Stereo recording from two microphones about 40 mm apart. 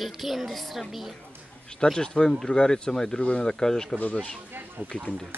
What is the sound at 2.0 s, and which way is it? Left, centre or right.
Speech, centre.